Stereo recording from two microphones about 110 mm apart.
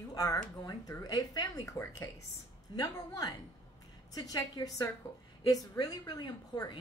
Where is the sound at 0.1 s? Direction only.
35° left (ahead or behind).